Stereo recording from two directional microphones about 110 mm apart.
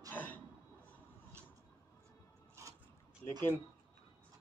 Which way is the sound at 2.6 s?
25° right (ahead or behind).